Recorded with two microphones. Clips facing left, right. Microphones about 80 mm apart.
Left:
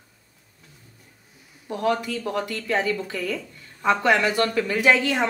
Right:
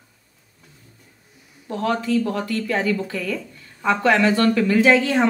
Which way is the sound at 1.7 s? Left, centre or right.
Centre.